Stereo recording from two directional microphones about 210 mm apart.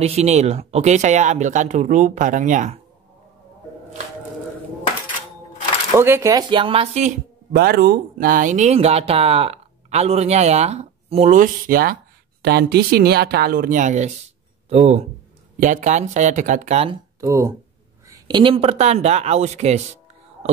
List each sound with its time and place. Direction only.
0.0 s speech: 30° right (ahead or behind)
5.9 s speech: 10° right (ahead or behind); by 16.9 s 30° right (ahead or behind)
17.2 s speech: 15° right (ahead or behind); by 19.8 s 30° right (ahead or behind)